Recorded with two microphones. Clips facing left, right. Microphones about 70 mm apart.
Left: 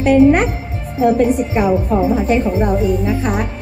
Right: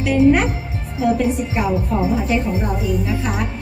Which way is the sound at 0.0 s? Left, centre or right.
Left.